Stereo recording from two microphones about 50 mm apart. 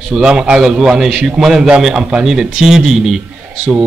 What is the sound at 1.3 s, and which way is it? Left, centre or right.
A man's voice, centre.